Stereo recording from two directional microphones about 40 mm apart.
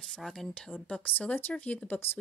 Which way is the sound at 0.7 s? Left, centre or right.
Left.